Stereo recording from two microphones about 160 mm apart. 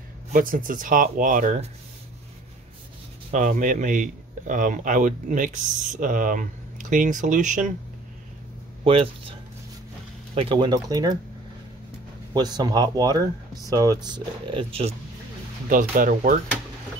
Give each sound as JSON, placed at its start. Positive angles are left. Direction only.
{"t": 0.3, "sound": "speech", "side_deg": -60}
{"t": 3.3, "sound": "speech", "side_deg": -50}
{"t": 8.8, "sound": "speech", "side_deg": -35}
{"t": 12.4, "sound": "speech", "side_deg": -25}
{"t": 15.7, "sound": "speech", "side_deg": -55}